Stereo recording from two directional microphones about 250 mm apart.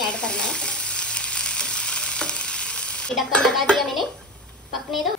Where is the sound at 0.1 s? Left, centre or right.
Centre.